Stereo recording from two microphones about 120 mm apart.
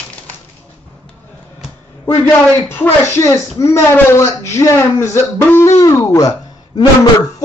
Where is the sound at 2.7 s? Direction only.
20° left (ahead or behind).